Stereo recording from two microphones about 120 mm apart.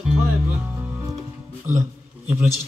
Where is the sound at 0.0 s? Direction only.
5° right (ahead or behind).